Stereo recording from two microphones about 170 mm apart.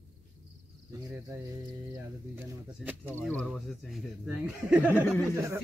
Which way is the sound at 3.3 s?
5° left (ahead or behind).